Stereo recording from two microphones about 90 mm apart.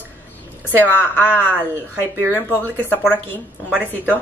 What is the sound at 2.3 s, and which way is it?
Speech, 20° left (ahead or behind).